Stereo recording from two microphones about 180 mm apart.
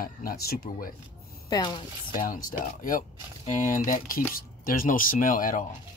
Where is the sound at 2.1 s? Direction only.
50° left (ahead or behind).